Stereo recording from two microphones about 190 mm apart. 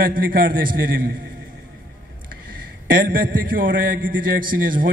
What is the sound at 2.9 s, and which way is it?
A man's voice, 50° right (ahead or behind).